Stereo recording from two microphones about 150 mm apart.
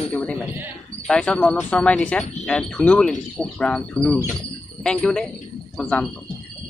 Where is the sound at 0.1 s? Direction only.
10° left (ahead or behind).